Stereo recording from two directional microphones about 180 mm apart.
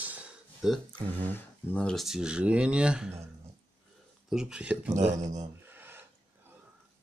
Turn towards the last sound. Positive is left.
turn(degrees=-10)  # may be behind; listen again after turning